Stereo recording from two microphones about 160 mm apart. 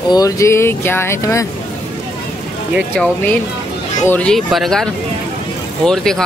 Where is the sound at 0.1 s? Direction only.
20° left (ahead or behind).